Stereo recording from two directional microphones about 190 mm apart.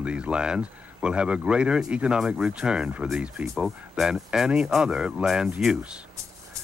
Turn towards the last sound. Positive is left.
turn(degrees=-5)  # may be behind; listen again after turning